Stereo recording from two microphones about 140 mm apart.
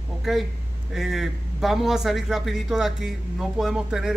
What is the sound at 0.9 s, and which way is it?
Speech, 5° right (ahead or behind).